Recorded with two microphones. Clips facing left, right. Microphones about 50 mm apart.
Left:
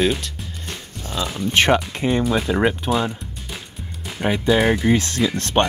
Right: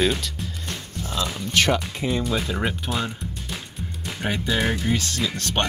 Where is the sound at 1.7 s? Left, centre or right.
Left.